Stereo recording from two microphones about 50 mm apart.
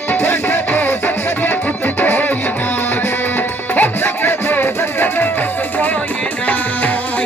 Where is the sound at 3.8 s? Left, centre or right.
Left.